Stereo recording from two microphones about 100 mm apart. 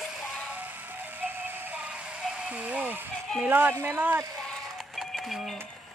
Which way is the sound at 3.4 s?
20° right (ahead or behind).